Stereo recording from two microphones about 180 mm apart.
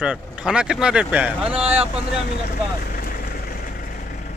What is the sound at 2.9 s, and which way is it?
Vehicle, 50° left (ahead or behind).